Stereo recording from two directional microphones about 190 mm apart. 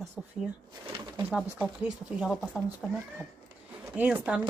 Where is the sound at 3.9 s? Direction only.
10° right (ahead or behind).